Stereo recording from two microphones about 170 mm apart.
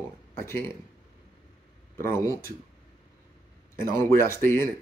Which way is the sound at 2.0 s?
15° left (ahead or behind).